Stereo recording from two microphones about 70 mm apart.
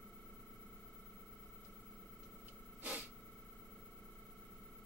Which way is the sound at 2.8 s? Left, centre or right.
Right.